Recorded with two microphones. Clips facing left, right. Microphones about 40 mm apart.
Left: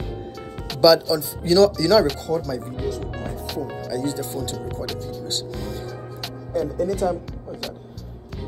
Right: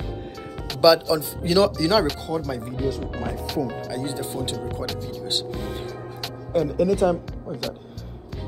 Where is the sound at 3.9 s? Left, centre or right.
Right.